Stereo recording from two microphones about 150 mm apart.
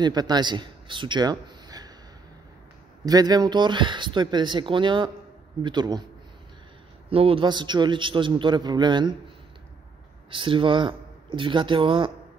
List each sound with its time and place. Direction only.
0.0 s a man's voice: 25° right (ahead or behind)
3.1 s a man's voice: 25° right (ahead or behind)
7.1 s a man's voice: 40° right (ahead or behind)
10.3 s a man's voice: 35° right (ahead or behind)